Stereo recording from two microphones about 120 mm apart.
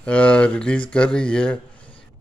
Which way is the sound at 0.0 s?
10° left (ahead or behind).